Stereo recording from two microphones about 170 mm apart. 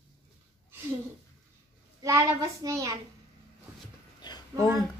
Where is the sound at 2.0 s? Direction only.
20° right (ahead or behind).